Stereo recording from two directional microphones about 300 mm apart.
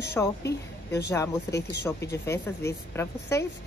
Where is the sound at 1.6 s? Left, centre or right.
Left.